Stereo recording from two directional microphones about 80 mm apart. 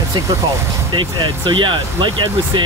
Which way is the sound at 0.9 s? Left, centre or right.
Right.